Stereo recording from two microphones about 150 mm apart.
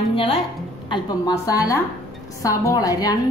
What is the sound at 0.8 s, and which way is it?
A woman's voice, 30° left (ahead or behind).